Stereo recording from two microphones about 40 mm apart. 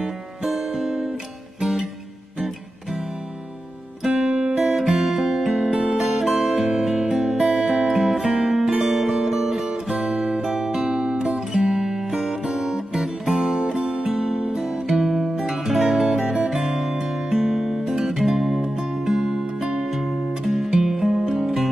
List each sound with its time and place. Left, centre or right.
0.5 s music: centre
2.4 s music: centre
4.1 s music: right
7.4 s music: centre
8.1 s music: centre
18.6 s music: right
18.9 s music: centre